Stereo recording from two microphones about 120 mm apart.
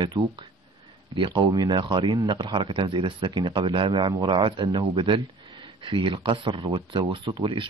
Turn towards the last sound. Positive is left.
turn(degrees=-45)  # may be behind; listen again after turning